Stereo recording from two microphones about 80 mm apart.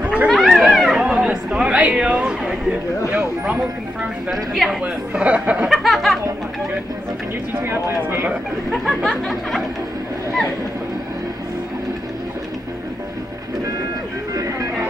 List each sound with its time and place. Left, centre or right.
0.0 s a sound: centre
0.3 s a sound: centre
0.7 s cat: centre
2.0 s a sound: centre
4.3 s a woman's voice: centre
4.8 s a man's voice: centre
5.7 s music: centre
7.6 s speech: right
8.7 s a woman's voice: centre
14.3 s music: right